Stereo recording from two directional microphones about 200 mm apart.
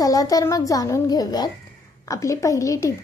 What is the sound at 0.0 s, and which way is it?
A woman's voice, 15° left (ahead or behind).